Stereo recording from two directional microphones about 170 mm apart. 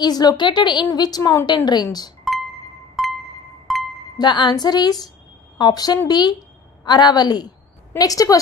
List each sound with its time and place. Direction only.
0.0 s a woman's voice: 25° left (ahead or behind)
3.0 s music: centre (ahead or behind)
4.2 s a woman's voice: 25° left (ahead or behind)